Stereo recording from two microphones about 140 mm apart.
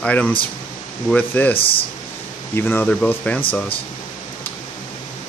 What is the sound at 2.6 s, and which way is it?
Speech, 15° left (ahead or behind).